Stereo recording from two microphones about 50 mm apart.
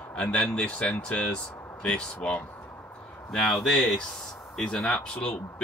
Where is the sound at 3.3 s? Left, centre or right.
Centre.